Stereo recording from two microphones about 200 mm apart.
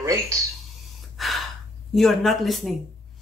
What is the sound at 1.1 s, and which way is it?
Gasp, centre (ahead or behind).